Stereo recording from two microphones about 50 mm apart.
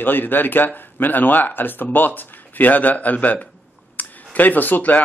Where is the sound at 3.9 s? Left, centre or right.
Left.